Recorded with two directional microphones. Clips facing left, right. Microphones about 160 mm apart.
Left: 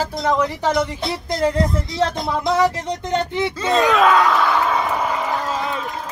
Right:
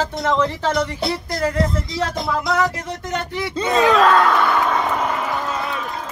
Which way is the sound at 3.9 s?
5° left (ahead or behind).